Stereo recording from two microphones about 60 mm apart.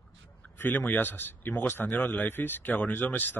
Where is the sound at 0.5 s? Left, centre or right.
Left.